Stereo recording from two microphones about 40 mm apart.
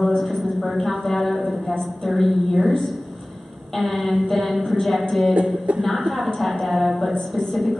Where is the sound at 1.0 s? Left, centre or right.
Centre.